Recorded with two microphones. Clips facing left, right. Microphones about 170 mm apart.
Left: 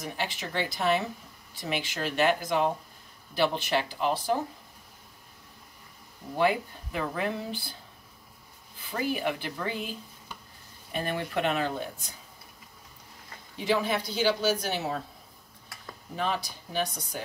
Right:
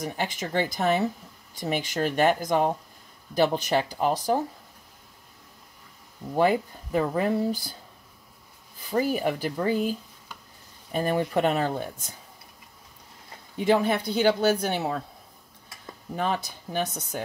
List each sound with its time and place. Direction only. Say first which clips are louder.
0.0 s speech: right 4 dB; 45° right (ahead or behind)
6.3 s speech: right 4 dB; 40° right (ahead or behind)
8.9 s speech: right 5 dB; 40° right (ahead or behind)
13.7 s speech: right 5 dB; 55° right (ahead or behind)
16.7 s speech: right 2 dB; 50° right (ahead or behind)